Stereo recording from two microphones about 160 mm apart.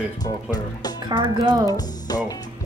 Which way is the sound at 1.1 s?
25° right (ahead or behind).